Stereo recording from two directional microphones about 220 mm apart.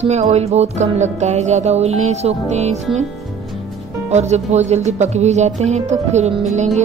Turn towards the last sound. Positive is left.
turn(degrees=-30)  # may be behind; listen again after turning